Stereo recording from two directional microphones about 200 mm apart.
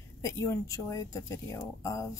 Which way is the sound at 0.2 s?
15° left (ahead or behind).